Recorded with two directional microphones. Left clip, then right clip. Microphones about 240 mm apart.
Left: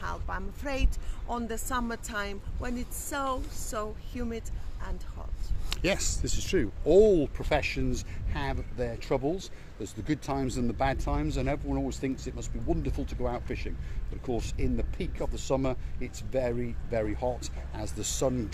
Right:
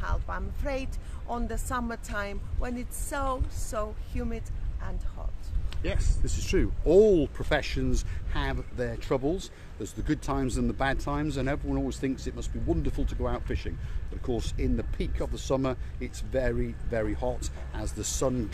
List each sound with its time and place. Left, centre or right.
0.0 s a woman's voice: centre
5.7 s a sound: left
6.4 s speech: centre